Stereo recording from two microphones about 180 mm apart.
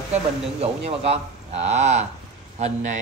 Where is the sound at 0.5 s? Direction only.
35° right (ahead or behind).